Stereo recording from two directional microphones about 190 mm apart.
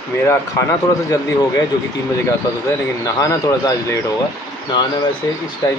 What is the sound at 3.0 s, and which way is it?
Speech, 20° left (ahead or behind).